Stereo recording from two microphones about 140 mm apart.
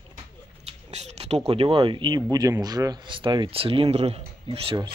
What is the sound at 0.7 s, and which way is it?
Speech, 50° right (ahead or behind).